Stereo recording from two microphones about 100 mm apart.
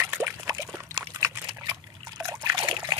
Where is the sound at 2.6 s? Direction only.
45° right (ahead or behind).